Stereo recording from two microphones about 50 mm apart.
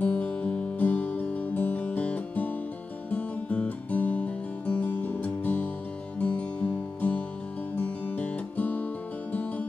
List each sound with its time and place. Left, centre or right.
0.0 s music: left
3.1 s guitar: left
6.1 s music: left